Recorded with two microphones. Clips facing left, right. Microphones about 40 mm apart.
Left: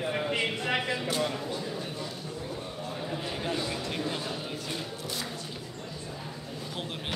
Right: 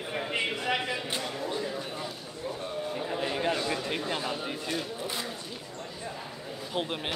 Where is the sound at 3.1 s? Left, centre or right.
Centre.